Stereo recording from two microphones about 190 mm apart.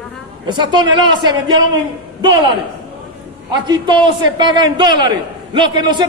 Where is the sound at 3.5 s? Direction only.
20° right (ahead or behind).